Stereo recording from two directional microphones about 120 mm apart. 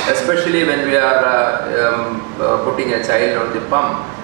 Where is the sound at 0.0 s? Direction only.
20° right (ahead or behind).